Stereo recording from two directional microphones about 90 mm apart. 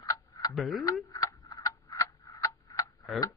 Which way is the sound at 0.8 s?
40° left (ahead or behind).